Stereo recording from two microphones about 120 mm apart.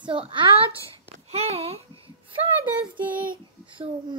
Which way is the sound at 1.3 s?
60° right (ahead or behind).